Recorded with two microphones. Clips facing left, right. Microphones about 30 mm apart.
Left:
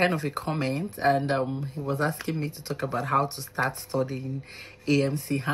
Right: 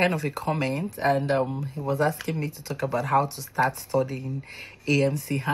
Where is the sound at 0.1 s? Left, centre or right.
Left.